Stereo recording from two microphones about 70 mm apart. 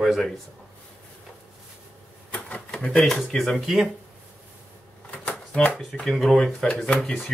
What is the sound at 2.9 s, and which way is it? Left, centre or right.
Speech, centre.